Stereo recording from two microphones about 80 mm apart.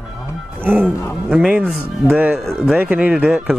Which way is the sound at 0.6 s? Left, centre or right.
Right.